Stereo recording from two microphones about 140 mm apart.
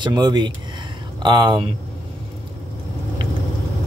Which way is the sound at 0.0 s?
30° right (ahead or behind).